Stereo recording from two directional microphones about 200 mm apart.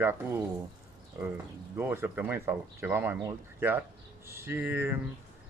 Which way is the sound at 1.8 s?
10° right (ahead or behind).